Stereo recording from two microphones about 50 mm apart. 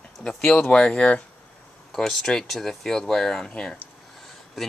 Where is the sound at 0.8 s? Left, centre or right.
Centre.